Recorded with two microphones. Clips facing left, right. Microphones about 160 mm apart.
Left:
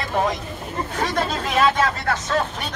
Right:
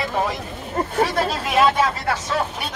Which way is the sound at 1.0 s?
10° right (ahead or behind).